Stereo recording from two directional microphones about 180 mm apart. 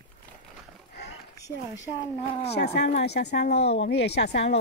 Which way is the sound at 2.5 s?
65° left (ahead or behind).